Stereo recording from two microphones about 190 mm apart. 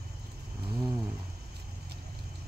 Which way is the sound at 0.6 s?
15° right (ahead or behind).